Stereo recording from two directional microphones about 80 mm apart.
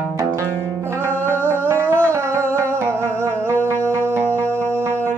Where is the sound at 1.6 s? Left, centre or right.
Right.